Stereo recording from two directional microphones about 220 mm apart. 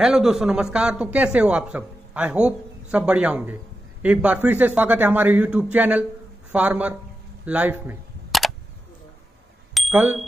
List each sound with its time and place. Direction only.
0.0 s a man's voice: centre (ahead or behind)
7.4 s camera: 5° right (ahead or behind)
9.8 s speech: 5° right (ahead or behind)